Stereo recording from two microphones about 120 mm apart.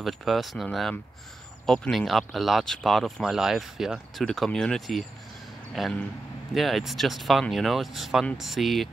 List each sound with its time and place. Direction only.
0.0 s speech: centre (ahead or behind)